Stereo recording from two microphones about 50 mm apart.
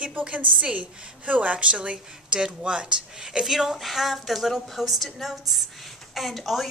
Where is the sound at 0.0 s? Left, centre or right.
Right.